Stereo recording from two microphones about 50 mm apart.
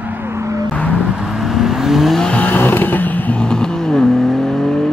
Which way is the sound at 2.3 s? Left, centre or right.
Left.